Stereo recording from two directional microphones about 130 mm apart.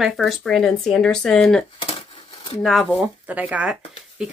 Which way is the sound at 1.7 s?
45° left (ahead or behind).